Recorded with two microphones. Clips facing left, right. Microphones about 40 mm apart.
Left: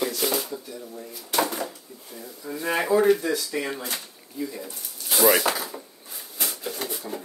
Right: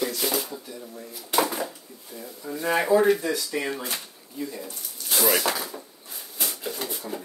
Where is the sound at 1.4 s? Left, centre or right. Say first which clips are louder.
Even; centre.